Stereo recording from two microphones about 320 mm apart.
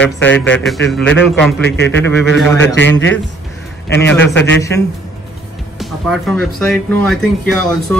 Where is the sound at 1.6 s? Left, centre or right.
Left.